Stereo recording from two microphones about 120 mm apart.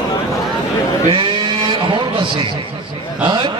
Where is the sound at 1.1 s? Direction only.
40° right (ahead or behind).